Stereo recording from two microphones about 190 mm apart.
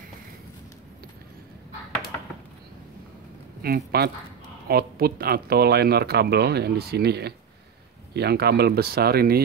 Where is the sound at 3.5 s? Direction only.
55° right (ahead or behind).